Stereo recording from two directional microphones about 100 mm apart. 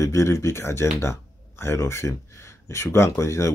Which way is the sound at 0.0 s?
30° left (ahead or behind).